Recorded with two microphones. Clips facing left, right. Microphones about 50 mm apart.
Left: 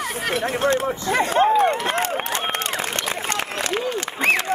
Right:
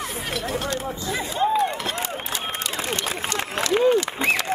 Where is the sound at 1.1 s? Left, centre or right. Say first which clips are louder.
Left 5 dB; left.